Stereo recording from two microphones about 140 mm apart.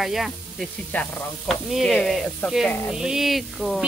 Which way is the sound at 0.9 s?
10° left (ahead or behind).